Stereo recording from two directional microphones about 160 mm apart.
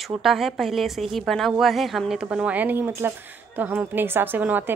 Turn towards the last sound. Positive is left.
turn(degrees=-10)  # may be behind; listen again after turning